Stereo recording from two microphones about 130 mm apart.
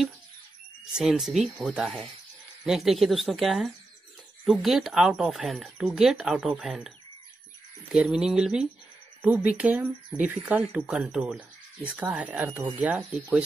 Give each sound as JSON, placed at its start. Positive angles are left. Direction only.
{"t": 0.9, "sound": "speech", "side_deg": -5}
{"t": 7.9, "sound": "speech", "side_deg": -5}